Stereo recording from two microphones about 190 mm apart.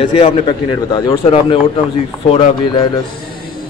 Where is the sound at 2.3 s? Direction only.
30° left (ahead or behind).